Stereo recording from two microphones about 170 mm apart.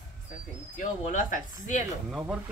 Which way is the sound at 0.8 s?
50° left (ahead or behind).